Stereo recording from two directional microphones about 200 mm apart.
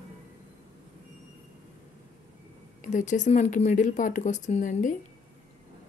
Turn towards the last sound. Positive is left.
turn(degrees=40)  # may be behind; listen again after turning